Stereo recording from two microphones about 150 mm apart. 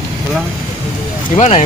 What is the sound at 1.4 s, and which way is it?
Speech, 50° left (ahead or behind).